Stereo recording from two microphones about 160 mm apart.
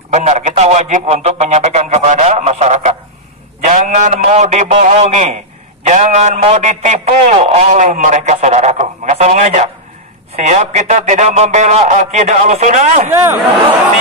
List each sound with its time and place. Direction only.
0.1 s a man's voice: 45° right (ahead or behind)